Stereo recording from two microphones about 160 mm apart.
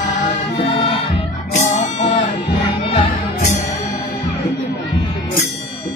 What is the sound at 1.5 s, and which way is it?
Music, 45° left (ahead or behind).